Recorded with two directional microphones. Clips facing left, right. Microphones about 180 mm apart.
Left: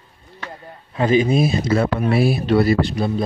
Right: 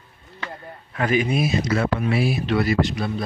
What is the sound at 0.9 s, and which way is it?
Speech, 25° left (ahead or behind).